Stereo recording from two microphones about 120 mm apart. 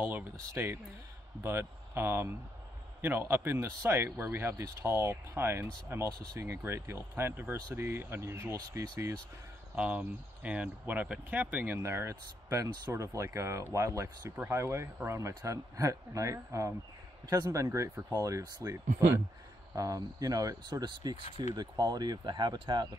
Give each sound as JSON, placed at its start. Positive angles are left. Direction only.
{"t": 0.0, "sound": "speech", "side_deg": -15}
{"t": 9.8, "sound": "speech", "side_deg": -10}